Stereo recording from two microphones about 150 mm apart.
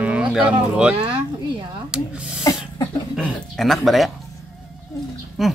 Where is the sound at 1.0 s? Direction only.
35° right (ahead or behind).